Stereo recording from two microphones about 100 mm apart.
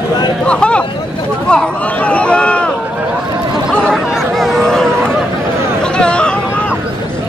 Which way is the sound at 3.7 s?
5° left (ahead or behind).